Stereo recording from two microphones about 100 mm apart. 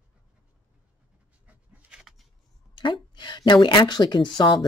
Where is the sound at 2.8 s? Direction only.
55° left (ahead or behind).